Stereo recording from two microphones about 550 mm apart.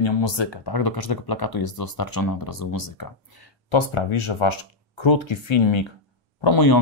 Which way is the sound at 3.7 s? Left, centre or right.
Left.